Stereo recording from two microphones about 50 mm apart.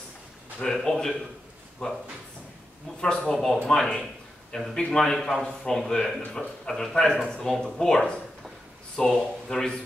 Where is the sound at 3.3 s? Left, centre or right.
Centre.